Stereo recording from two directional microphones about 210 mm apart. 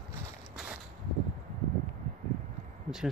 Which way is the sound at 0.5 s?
Centre (ahead or behind).